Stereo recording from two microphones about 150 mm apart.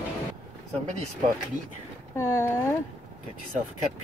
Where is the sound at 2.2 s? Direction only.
20° left (ahead or behind).